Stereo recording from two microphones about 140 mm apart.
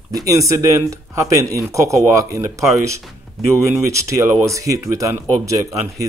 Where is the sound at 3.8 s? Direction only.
20° right (ahead or behind).